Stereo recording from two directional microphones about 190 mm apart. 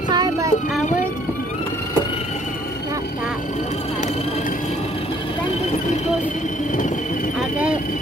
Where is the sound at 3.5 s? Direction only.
35° left (ahead or behind).